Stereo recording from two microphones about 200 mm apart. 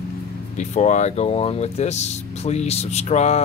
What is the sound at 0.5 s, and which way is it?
Speech, 35° left (ahead or behind).